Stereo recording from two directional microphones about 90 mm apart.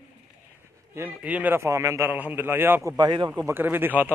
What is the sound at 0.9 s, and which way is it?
Speech, 20° right (ahead or behind).